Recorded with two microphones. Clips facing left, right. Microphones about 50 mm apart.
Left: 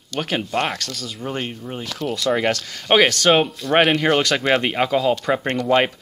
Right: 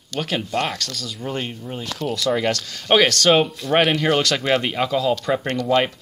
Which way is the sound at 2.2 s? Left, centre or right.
Left.